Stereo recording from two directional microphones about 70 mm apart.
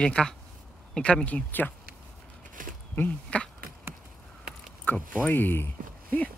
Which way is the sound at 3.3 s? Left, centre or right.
Centre.